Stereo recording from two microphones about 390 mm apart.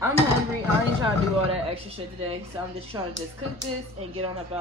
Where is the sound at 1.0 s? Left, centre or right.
Centre.